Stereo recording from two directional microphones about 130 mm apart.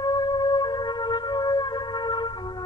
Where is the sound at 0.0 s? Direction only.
35° left (ahead or behind).